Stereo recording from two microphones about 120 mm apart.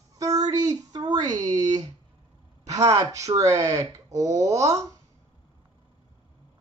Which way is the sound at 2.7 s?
30° right (ahead or behind).